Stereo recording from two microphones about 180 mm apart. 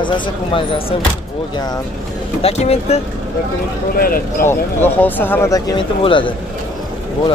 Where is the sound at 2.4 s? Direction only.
35° left (ahead or behind).